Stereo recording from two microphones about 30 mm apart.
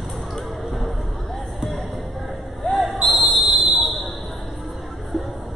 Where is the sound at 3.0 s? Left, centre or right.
Centre.